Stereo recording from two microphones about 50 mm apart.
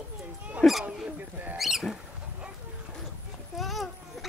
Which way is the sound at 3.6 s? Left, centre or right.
Centre.